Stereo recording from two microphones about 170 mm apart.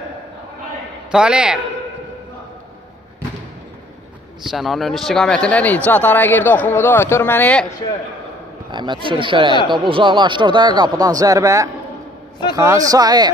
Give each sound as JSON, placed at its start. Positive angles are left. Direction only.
{"t": 1.1, "sound": "a man's voice", "side_deg": -5}
{"t": 4.4, "sound": "a man's voice", "side_deg": 0}
{"t": 8.7, "sound": "speech", "side_deg": -25}